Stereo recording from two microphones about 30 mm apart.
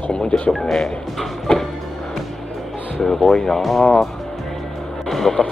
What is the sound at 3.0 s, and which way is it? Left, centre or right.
Speech, centre.